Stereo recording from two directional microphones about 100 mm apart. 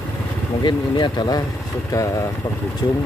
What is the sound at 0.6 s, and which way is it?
Speech, 50° left (ahead or behind).